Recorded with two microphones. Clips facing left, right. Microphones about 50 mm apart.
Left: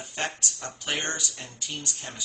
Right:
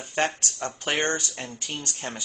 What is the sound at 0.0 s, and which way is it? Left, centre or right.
Speech, right.